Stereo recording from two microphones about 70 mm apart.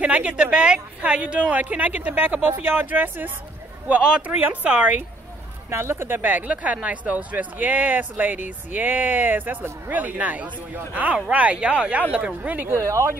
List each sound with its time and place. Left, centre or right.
0.0 s a man's voice: centre
5.7 s a man's voice: right
12.6 s speech: right